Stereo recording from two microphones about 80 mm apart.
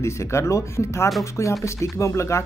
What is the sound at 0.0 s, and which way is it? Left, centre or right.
Speech, left.